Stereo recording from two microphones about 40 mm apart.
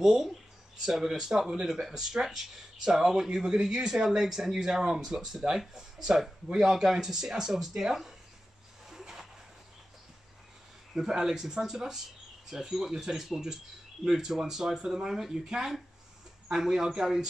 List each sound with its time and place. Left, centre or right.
0.0 s speech: centre
8.8 s a sound: centre
11.0 s speech: centre